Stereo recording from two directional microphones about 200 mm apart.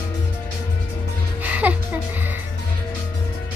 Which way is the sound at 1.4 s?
5° right (ahead or behind).